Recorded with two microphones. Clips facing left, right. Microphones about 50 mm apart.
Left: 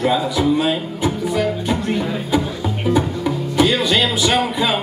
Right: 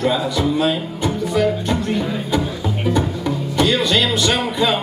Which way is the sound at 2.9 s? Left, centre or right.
Centre.